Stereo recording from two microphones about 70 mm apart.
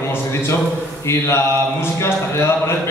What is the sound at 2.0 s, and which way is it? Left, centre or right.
Speech, left.